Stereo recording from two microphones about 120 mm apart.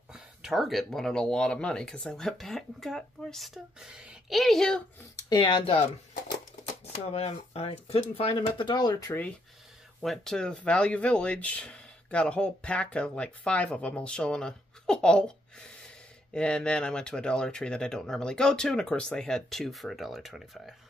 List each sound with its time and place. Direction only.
0.1 s speech: 5° right (ahead or behind)
5.1 s speech: 40° left (ahead or behind)
6.7 s speech: 60° left (ahead or behind)
8.2 s speech: 45° left (ahead or behind)
10.0 s speech: 5° left (ahead or behind)